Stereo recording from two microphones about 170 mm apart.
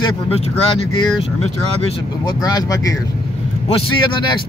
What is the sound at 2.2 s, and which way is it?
Speech, 25° left (ahead or behind).